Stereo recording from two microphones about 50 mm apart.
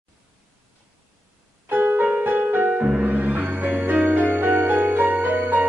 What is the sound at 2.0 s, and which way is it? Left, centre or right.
Music, right.